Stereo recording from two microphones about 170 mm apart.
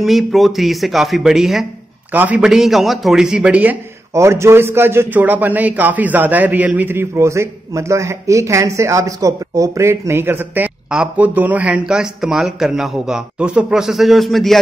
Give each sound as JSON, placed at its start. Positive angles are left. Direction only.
{"t": 0.0, "sound": "a man's voice", "side_deg": 0}